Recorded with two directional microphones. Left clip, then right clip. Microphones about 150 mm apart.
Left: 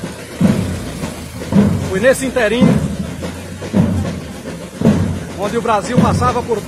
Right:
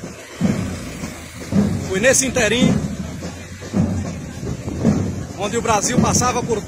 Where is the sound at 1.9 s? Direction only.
20° right (ahead or behind).